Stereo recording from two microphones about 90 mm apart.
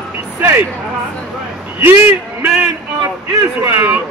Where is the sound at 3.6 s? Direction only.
25° right (ahead or behind).